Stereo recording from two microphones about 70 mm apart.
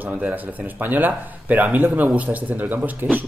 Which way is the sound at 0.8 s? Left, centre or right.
Right.